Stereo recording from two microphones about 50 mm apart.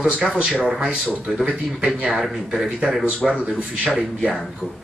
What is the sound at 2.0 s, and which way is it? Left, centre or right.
A man's voice, centre.